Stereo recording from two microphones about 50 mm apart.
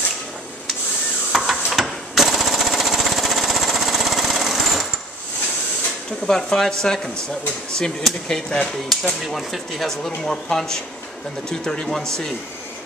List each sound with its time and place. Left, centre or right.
1.3 s jackhammer: centre
6.2 s speech: centre
9.2 s speech: centre